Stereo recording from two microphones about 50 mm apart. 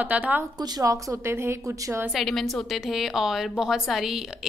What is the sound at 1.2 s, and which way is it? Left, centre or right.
Speech, right.